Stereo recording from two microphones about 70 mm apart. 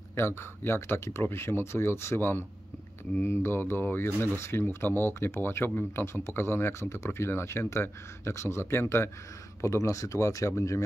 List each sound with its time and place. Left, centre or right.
0.4 s speech: left
9.6 s speech: left